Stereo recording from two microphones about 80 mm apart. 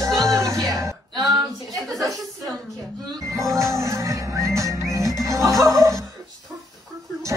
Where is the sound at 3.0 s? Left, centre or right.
Right.